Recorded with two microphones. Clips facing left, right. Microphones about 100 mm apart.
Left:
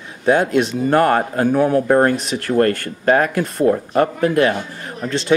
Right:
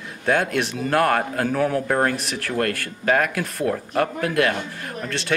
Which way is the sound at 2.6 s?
90° right.